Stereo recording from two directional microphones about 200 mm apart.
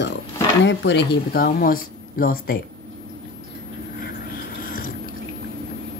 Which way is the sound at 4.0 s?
45° left (ahead or behind).